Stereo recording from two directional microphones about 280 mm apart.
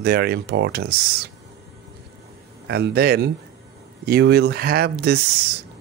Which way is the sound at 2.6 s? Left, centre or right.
Right.